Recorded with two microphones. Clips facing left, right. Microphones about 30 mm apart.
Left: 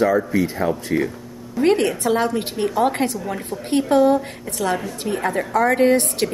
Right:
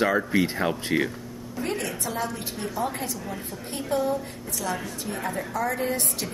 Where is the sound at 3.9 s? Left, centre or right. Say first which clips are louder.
Left 9 dB; left.